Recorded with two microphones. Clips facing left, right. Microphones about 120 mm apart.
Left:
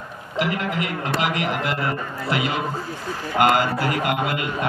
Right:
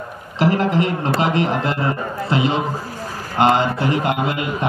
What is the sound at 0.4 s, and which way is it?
Speech, 35° right (ahead or behind).